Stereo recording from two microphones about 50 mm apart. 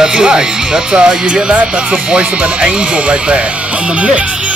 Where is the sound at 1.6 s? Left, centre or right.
Centre.